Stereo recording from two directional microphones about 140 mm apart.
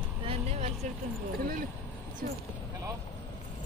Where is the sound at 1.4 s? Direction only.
90° right.